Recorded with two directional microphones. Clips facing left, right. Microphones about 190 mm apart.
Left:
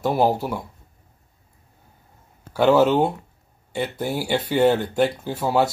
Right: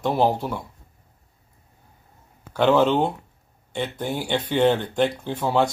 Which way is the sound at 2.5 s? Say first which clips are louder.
Left 2 dB; 10° left (ahead or behind).